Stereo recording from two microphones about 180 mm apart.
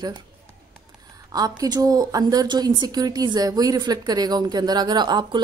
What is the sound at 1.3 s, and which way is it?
A woman's voice, 20° right (ahead or behind).